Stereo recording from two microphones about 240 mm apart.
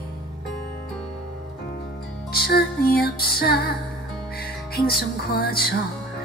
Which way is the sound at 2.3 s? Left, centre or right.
Left.